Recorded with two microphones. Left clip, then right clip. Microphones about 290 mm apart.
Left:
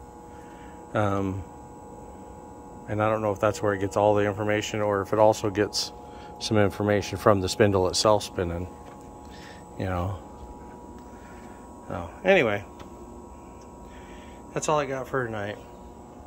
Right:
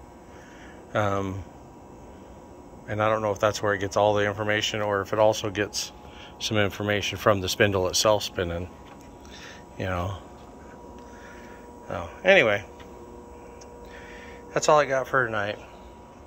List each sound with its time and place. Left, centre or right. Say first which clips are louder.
0.9 s speech: even; centre
2.9 s speech: right 1 dB; centre
9.8 s speech: right 1 dB; centre
11.9 s speech: right 2 dB; centre
14.5 s speech: right 6 dB; centre